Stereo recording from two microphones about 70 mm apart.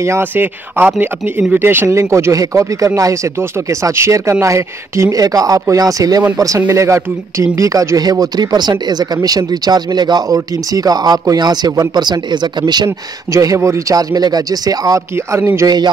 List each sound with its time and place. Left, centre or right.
0.2 s speech: right
1.9 s a man's voice: right
13.3 s speech: right
13.6 s speech: right
13.9 s speech: right
15.6 s a man's voice: right